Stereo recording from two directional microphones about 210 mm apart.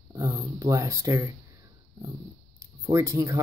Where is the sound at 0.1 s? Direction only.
15° right (ahead or behind).